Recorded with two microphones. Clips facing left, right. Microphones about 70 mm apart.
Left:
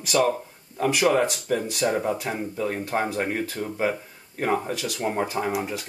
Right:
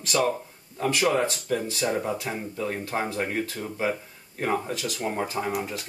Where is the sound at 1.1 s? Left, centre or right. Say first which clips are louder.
Left 3 dB; centre.